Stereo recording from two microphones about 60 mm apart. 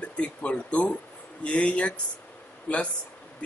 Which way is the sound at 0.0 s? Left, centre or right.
Centre.